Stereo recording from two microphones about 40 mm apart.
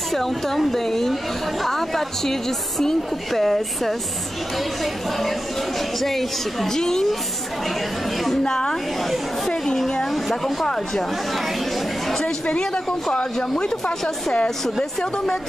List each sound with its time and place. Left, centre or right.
0.1 s a woman's voice: centre
8.5 s a woman's voice: centre
10.0 s a woman's voice: centre
11.3 s a sound: centre
13.1 s speech: left
14.6 s a woman's voice: centre